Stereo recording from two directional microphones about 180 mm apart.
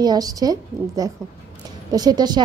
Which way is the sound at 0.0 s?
20° right (ahead or behind).